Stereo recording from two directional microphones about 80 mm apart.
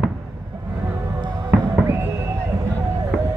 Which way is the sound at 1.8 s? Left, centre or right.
Right.